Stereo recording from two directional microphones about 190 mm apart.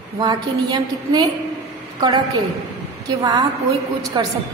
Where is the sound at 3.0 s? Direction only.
20° right (ahead or behind).